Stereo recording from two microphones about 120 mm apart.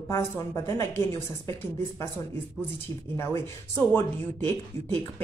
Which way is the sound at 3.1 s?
20° left (ahead or behind).